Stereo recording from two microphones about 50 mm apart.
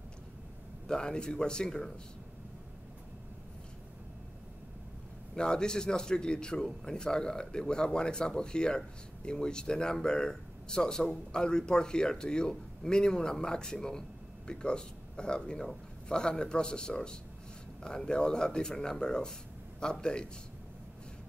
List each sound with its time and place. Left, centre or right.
0.8 s speech: centre
5.3 s speech: centre